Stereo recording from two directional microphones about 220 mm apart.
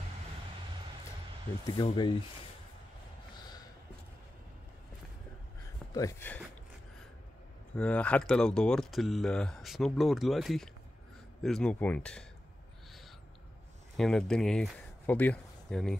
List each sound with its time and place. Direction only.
1.8 s speech: 20° left (ahead or behind)
5.9 s speech: 10° left (ahead or behind)
7.7 s speech: 5° left (ahead or behind)
13.9 s speech: 5° left (ahead or behind)